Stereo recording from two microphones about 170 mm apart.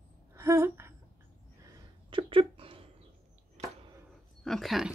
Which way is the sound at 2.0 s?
30° right (ahead or behind).